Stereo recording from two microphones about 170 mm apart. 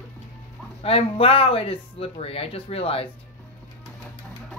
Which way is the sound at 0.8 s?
35° left (ahead or behind).